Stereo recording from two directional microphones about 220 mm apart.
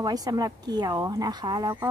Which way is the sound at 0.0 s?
15° right (ahead or behind).